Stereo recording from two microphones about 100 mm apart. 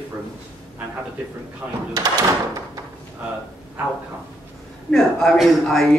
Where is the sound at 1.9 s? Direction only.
40° right (ahead or behind).